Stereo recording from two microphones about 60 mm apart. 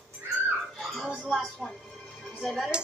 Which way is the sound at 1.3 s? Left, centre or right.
Centre.